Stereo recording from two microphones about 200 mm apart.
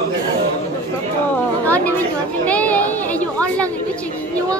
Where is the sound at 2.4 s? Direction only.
5° left (ahead or behind).